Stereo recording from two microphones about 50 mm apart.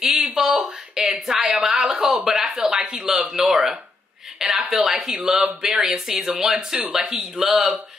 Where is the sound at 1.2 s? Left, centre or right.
Centre.